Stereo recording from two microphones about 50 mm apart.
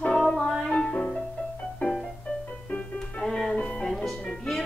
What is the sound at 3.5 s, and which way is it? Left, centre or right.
Music, left.